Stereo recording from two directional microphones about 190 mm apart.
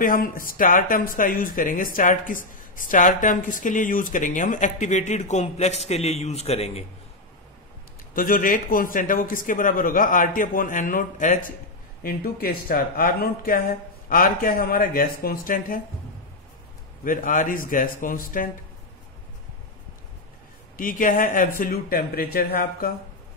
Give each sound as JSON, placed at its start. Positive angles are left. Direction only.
{"t": 0.0, "sound": "speech", "side_deg": 45}
{"t": 8.1, "sound": "speech", "side_deg": 45}
{"t": 17.0, "sound": "speech", "side_deg": 45}
{"t": 20.7, "sound": "speech", "side_deg": 45}